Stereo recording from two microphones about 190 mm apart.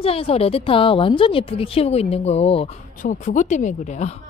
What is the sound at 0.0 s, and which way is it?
Speech, 30° left (ahead or behind).